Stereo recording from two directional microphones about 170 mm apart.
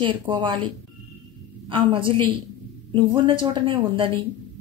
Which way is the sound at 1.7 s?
30° right (ahead or behind).